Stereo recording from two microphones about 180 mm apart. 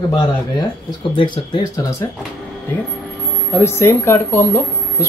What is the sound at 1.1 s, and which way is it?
Speech, 30° left (ahead or behind).